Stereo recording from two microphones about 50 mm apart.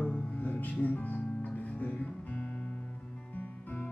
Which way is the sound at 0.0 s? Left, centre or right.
Left.